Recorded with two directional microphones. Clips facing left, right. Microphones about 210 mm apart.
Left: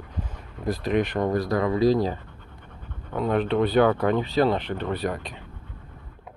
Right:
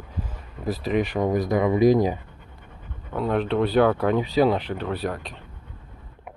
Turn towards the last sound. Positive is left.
turn(degrees=0)  # may be behind; listen again after turning